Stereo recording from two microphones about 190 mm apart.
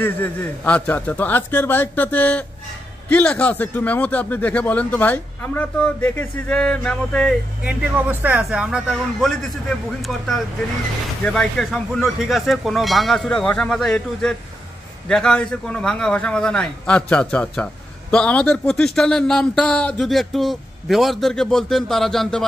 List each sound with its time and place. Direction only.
0.0 s speech: 10° left (ahead or behind)
7.6 s speech: 10° right (ahead or behind)